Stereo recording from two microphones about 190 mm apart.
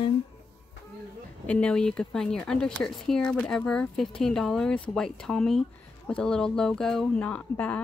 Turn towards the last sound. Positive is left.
turn(degrees=5)  # may be behind; listen again after turning